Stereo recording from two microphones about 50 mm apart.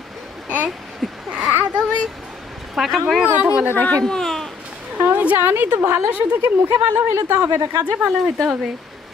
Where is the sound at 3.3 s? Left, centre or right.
Right.